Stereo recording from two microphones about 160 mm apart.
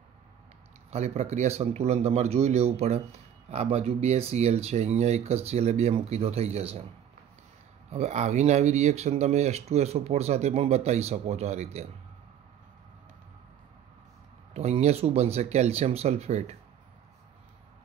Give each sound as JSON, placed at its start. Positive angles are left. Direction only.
{"t": 0.8, "sound": "speech", "side_deg": -40}
{"t": 7.9, "sound": "speech", "side_deg": -45}
{"t": 14.5, "sound": "speech", "side_deg": -40}